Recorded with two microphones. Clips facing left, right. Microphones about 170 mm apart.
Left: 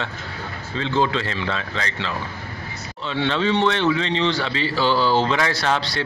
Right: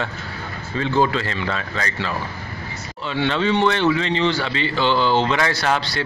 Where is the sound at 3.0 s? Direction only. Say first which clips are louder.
Right 1 dB; centre (ahead or behind).